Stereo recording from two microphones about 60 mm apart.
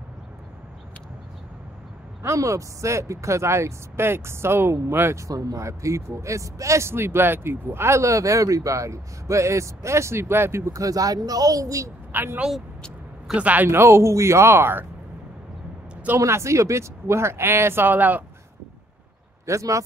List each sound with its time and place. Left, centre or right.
2.2 s speech: right
5.3 s speech: right
5.6 s speech: right
6.9 s speech: right
12.1 s speech: right
13.4 s speech: right
13.7 s speech: right
16.2 s speech: right
19.4 s speech: right